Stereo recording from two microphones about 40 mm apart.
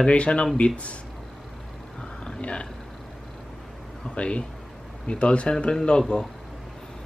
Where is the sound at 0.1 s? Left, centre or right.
Left.